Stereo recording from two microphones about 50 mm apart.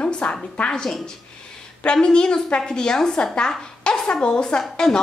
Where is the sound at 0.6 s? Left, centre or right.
Centre.